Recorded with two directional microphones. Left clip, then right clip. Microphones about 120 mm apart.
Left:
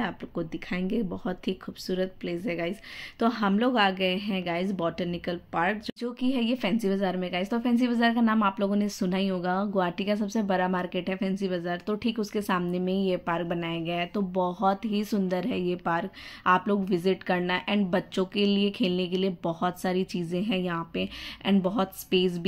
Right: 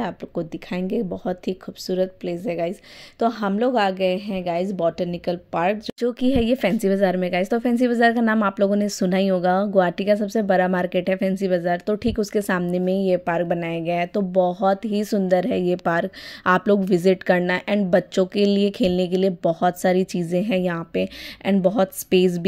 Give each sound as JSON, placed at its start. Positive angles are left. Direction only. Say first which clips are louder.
{"t": 0.0, "sound": "a woman's voice", "louder": "right 5 dB", "side_deg": -40}